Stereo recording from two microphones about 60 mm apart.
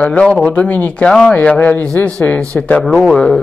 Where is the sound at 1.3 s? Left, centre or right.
Left.